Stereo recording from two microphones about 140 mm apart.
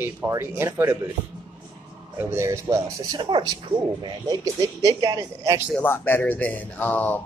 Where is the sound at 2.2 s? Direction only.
20° right (ahead or behind).